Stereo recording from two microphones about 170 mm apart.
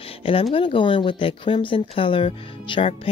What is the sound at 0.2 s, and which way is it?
Speech, 35° left (ahead or behind).